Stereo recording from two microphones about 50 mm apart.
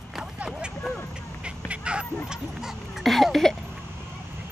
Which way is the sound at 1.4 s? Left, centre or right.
Right.